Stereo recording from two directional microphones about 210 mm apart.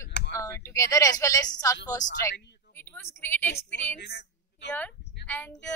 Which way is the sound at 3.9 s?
55° left (ahead or behind).